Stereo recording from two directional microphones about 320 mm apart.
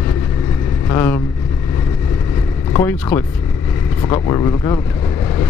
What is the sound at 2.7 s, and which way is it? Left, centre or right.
Speech, centre.